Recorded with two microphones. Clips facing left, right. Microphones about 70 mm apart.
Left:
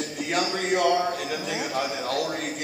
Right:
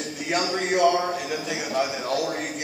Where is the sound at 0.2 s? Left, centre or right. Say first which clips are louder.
Right 1 dB; centre.